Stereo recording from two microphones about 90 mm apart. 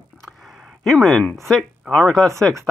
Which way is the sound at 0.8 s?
5° left (ahead or behind).